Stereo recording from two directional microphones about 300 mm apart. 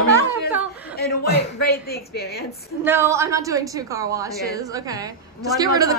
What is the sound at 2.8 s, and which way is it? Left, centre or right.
A woman's voice, centre.